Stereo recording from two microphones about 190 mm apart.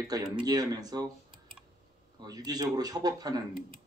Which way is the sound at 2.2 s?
20° right (ahead or behind).